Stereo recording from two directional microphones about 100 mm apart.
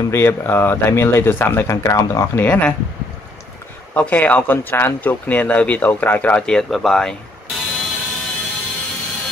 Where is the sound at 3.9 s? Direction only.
15° left (ahead or behind).